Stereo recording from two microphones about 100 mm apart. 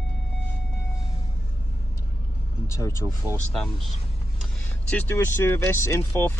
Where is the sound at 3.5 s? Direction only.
5° left (ahead or behind).